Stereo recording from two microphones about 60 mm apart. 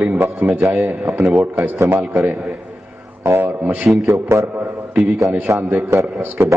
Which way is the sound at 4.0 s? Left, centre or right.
Right.